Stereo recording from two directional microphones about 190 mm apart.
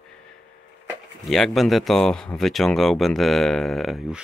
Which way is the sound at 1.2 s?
Centre (ahead or behind).